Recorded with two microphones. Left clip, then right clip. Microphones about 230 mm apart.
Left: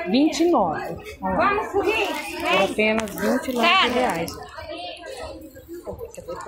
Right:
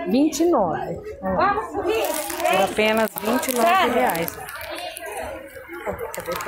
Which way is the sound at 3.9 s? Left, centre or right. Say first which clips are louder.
Right 2 dB; centre.